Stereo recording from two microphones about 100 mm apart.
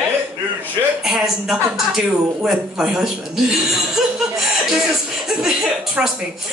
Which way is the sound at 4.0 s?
5° right (ahead or behind).